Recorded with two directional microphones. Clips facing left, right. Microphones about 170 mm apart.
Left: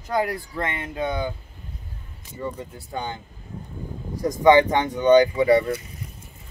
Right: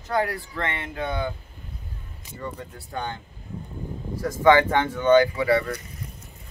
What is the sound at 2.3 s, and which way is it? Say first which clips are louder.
Speech: left 3 dB; 10° left (ahead or behind).